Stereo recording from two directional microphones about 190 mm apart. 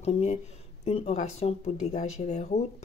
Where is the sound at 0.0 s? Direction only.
35° left (ahead or behind).